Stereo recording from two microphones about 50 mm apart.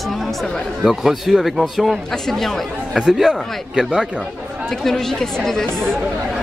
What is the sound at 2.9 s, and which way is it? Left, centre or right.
Speech, centre.